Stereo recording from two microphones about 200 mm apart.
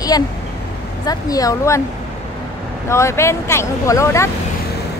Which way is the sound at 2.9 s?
15° left (ahead or behind).